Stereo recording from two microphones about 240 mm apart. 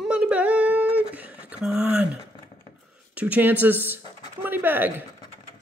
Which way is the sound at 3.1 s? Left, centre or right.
Centre.